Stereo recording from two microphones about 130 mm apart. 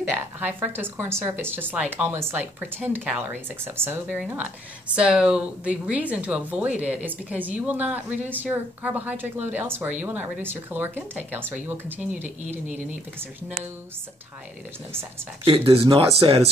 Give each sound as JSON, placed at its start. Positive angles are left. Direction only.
{"t": 0.4, "sound": "speech", "side_deg": -15}
{"t": 4.9, "sound": "speech", "side_deg": -5}
{"t": 15.4, "sound": "speech", "side_deg": -45}